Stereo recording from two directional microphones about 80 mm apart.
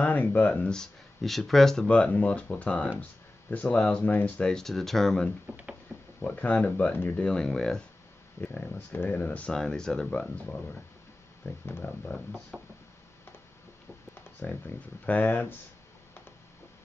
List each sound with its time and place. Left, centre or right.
0.0 s speech: left
0.7 s speech: centre; by 4.3 s left
4.4 s speech: centre
6.2 s speech: left
8.4 s speech: left
9.5 s speech: centre
11.4 s speech: left
11.8 s speech: centre
12.5 s knock: centre
14.4 s speech: left